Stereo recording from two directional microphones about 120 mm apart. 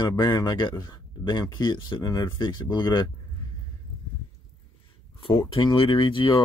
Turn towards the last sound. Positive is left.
turn(degrees=40)  # may be behind; listen again after turning